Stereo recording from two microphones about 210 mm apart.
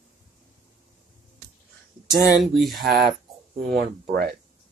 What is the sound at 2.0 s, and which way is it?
Speech, centre (ahead or behind).